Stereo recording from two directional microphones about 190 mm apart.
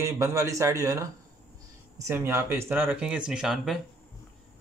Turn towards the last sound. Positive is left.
turn(degrees=0)  # may be behind; listen again after turning